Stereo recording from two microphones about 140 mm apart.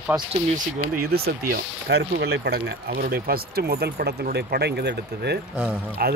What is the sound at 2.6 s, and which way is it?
Speech, 90° right.